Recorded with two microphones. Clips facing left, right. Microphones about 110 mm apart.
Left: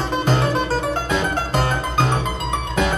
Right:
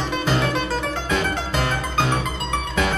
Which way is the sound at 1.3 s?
45° left (ahead or behind).